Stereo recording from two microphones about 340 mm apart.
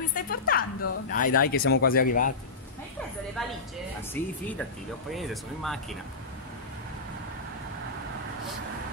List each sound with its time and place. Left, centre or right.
0.1 s a woman's voice: left
3.4 s speech: centre